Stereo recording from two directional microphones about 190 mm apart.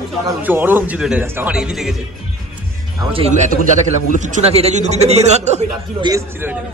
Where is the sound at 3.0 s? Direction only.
30° right (ahead or behind).